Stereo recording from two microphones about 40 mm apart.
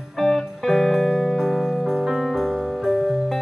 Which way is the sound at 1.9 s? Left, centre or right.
Centre.